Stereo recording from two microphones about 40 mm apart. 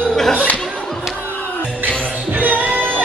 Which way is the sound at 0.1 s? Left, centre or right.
Centre.